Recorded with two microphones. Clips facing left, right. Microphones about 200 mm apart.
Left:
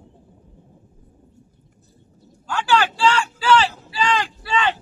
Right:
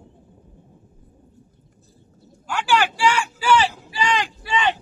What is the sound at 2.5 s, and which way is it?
Vehicle, 10° right (ahead or behind).